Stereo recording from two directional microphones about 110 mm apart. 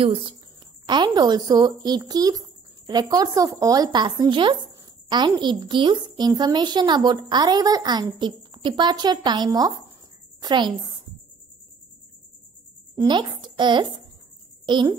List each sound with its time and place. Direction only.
0.0 s a woman's voice: 50° right (ahead or behind)
12.9 s a woman's voice: 40° right (ahead or behind)